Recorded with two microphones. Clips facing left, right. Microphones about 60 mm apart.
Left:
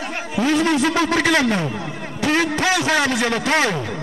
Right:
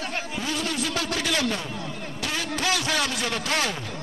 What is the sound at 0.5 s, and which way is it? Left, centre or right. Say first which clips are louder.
Speech: left 11 dB; left.